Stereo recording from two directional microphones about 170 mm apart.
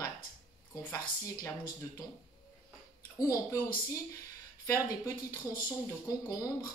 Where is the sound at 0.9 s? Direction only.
20° left (ahead or behind).